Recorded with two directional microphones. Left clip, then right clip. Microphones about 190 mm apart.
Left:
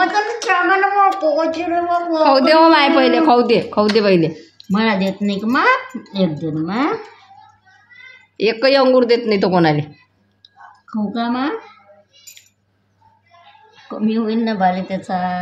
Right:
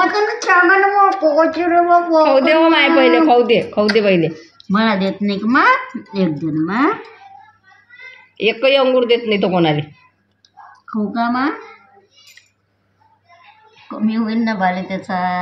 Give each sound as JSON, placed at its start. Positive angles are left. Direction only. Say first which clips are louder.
{"t": 0.0, "sound": "a woman's voice", "louder": "right 1 dB", "side_deg": 5}
{"t": 2.2, "sound": "a man's voice", "louder": "left 1 dB", "side_deg": 25}
{"t": 4.7, "sound": "a woman's voice", "louder": "right 1 dB", "side_deg": 10}
{"t": 8.5, "sound": "a man's voice", "louder": "even", "side_deg": 35}
{"t": 10.9, "sound": "a woman's voice", "louder": "right 3 dB", "side_deg": 10}
{"t": 13.8, "sound": "a woman's voice", "louder": "left 1 dB", "side_deg": 15}